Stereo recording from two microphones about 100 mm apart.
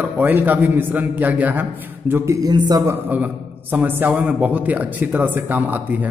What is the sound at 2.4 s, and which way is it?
Speech, 40° right (ahead or behind).